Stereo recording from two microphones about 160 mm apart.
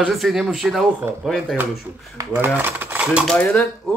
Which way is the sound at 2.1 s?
15° right (ahead or behind).